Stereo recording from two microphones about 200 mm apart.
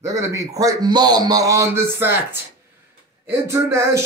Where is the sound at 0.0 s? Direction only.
15° right (ahead or behind).